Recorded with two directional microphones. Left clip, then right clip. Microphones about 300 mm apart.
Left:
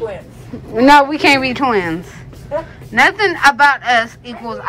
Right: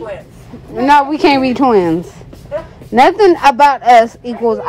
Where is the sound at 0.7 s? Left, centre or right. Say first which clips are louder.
Left 1 dB; centre.